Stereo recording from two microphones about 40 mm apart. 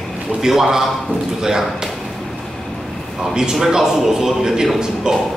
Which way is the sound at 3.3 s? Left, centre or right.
Centre.